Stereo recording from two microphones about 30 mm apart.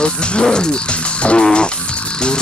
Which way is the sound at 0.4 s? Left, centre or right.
Left.